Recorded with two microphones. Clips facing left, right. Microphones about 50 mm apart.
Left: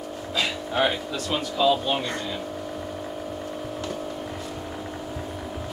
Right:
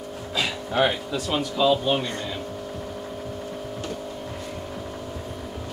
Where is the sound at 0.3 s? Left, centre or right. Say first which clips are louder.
Even; centre.